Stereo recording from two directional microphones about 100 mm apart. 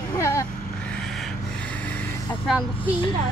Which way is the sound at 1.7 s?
15° left (ahead or behind).